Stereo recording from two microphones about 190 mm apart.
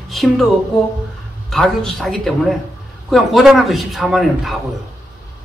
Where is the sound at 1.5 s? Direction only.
Centre (ahead or behind).